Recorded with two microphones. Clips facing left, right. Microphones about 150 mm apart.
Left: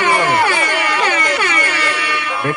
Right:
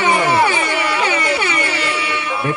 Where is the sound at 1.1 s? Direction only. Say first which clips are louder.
Even; 55° left (ahead or behind).